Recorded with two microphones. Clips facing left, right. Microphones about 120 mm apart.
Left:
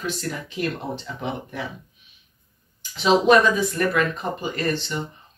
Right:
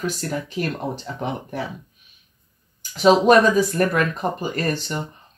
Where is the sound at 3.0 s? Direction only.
45° right (ahead or behind).